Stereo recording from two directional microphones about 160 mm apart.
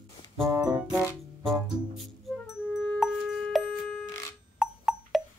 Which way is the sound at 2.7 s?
10° left (ahead or behind).